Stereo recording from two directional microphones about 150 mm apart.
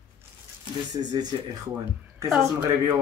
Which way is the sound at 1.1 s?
25° right (ahead or behind).